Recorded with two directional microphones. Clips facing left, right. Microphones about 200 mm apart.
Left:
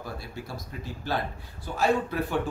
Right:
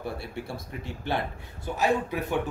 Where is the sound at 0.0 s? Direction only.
30° right (ahead or behind).